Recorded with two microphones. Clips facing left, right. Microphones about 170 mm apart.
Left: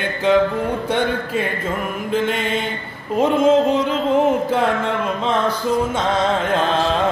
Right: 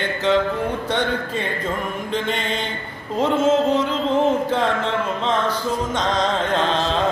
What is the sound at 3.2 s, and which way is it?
Mantra, 15° left (ahead or behind).